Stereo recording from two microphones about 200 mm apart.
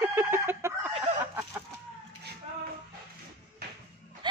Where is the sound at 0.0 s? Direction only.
10° right (ahead or behind).